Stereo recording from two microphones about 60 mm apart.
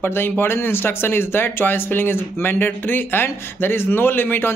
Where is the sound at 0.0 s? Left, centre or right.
Left.